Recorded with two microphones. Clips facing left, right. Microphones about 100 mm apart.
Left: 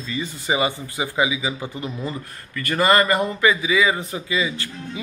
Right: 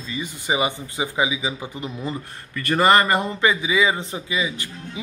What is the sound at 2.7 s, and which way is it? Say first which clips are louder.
Speech: right 1 dB; 25° right (ahead or behind).